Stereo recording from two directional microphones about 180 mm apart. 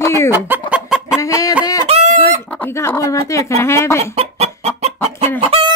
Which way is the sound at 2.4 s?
10° left (ahead or behind).